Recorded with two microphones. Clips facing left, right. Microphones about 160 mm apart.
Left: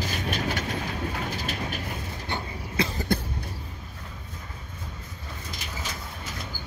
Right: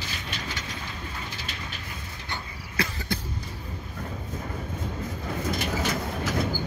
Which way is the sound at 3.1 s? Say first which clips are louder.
Left 8 dB; 55° left (ahead or behind).